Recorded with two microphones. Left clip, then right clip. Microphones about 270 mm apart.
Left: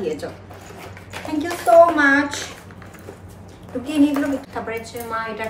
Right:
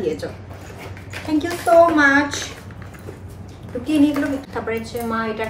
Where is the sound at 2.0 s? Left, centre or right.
Centre.